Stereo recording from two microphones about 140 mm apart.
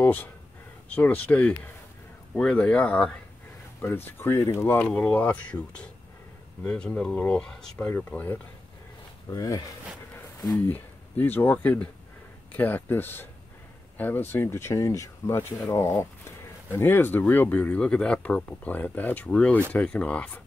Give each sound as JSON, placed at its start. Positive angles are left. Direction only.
{"t": 0.0, "sound": "speech", "side_deg": 10}
{"t": 9.3, "sound": "speech", "side_deg": 25}
{"t": 10.7, "sound": "speech", "side_deg": 15}